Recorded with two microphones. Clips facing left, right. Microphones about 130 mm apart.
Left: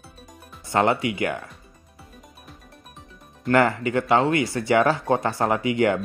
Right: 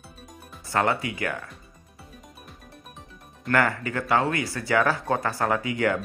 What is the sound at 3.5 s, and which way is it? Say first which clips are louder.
Speech: left 5 dB; 20° left (ahead or behind).